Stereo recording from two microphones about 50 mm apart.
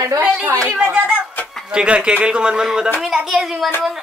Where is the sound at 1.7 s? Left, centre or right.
Centre.